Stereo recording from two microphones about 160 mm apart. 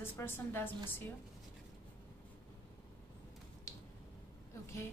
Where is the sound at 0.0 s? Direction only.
15° left (ahead or behind).